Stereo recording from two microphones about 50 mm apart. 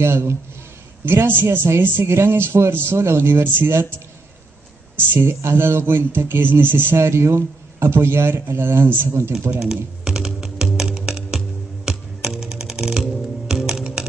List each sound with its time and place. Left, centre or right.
0.0 s a man's voice: right
1.0 s speech: right
1.7 s a man's voice: right
5.2 s speech: right
7.0 s a man's voice: right
9.6 s music: centre
13.6 s typing: centre